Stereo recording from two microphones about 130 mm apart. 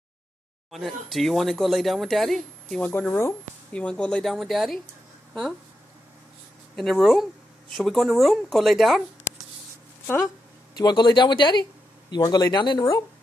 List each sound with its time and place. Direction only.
0.7 s speech: centre (ahead or behind)
2.9 s speech: 15° left (ahead or behind); by 4.8 s centre (ahead or behind)
6.8 s speech: centre (ahead or behind)
10.8 s speech: 35° left (ahead or behind)